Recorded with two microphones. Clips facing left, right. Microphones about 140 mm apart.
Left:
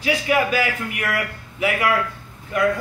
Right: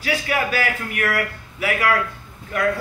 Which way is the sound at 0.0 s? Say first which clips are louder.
Left 3 dB; 20° left (ahead or behind).